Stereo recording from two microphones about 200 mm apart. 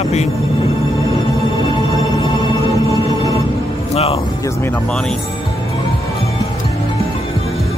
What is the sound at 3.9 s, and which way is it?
Music, 30° left (ahead or behind).